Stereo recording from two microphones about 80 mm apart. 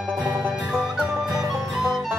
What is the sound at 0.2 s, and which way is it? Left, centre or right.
Music, right.